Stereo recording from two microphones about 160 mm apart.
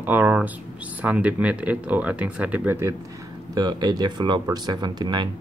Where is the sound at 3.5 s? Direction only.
25° right (ahead or behind).